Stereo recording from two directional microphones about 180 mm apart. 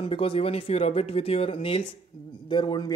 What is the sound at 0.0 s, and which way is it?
A man's voice, 30° left (ahead or behind).